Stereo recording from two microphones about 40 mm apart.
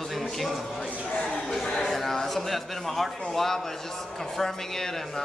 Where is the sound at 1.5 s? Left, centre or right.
Centre.